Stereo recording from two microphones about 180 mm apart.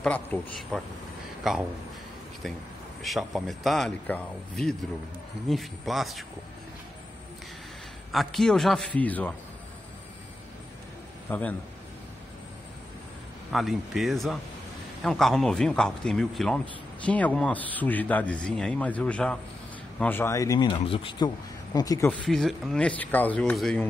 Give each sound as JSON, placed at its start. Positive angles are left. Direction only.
{"t": 0.0, "sound": "a man's voice", "side_deg": 5}
{"t": 8.1, "sound": "a man's voice", "side_deg": 0}
{"t": 11.2, "sound": "a man's voice", "side_deg": 10}
{"t": 13.5, "sound": "a man's voice", "side_deg": 0}
{"t": 20.8, "sound": "speech", "side_deg": 30}
{"t": 22.2, "sound": "speech", "side_deg": 0}